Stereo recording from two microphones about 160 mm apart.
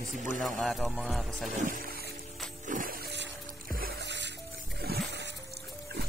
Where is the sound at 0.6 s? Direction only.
Centre (ahead or behind).